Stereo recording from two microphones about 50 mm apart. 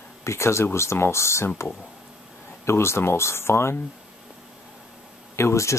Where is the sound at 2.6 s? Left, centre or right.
Left.